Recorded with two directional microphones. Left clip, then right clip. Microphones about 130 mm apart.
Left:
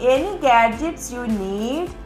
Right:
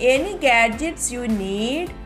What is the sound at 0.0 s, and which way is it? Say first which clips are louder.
Speech: even; 40° right (ahead or behind).